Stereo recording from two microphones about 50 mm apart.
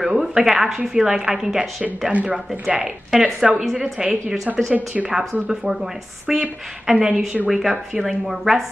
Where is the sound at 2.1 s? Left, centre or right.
Right.